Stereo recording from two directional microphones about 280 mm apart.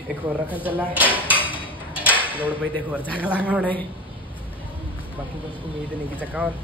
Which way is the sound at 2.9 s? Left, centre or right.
Centre.